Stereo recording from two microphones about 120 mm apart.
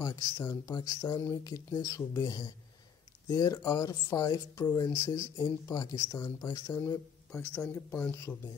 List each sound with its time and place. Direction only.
0.0 s speech: 30° left (ahead or behind)